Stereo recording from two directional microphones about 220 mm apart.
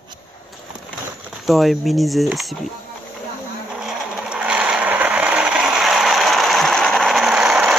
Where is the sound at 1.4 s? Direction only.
Centre (ahead or behind).